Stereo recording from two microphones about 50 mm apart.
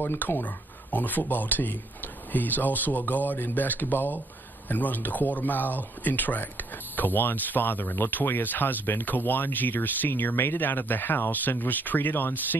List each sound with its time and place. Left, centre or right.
0.0 s speech: left
0.9 s speech: left